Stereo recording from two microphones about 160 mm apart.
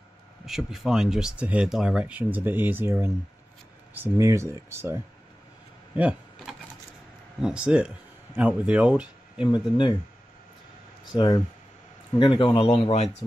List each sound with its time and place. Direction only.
0.5 s speech: centre (ahead or behind)
5.9 s a sound: 10° right (ahead or behind)
7.4 s speech: 5° right (ahead or behind)
9.5 s speech: 30° left (ahead or behind)
11.1 s speech: 30° left (ahead or behind)